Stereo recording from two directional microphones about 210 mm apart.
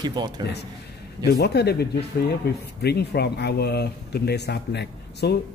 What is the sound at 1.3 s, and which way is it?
Speech, 50° left (ahead or behind).